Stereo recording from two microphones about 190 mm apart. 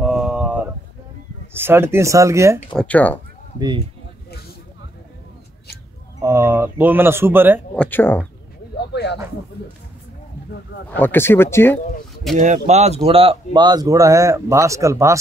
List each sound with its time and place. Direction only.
0.0 s a sound: centre (ahead or behind)
1.5 s speech: 10° right (ahead or behind)
2.7 s speech: 5° left (ahead or behind)
3.5 s speech: 25° right (ahead or behind)
6.2 s speech: 15° right (ahead or behind)
7.7 s speech: 10° left (ahead or behind)
8.7 s speech: 60° left (ahead or behind)
11.0 s speech: 10° left (ahead or behind)
12.4 s speech: 40° right (ahead or behind); by 15.1 s 15° right (ahead or behind)